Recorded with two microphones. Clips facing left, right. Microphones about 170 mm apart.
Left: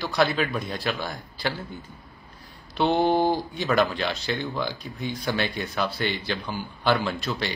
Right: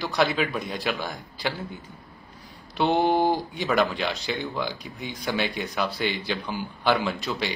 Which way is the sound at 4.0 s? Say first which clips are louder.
Left 1 dB; 15° right (ahead or behind).